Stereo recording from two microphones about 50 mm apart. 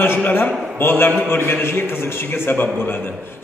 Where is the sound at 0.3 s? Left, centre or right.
Left.